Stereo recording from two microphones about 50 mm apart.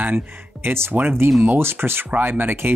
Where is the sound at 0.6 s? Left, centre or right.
Right.